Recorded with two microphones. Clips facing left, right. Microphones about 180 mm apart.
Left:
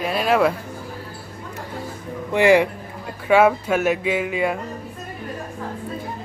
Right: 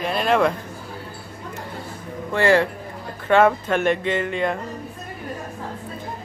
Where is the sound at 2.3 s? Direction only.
15° left (ahead or behind).